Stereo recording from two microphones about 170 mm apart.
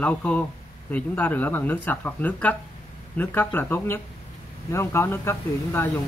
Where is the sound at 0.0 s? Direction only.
5° left (ahead or behind).